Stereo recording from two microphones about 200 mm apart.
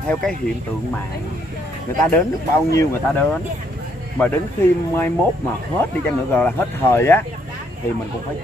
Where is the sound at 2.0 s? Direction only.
10° left (ahead or behind).